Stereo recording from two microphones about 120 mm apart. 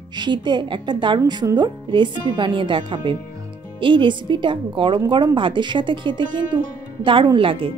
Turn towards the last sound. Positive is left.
turn(degrees=-45)  # may be behind; listen again after turning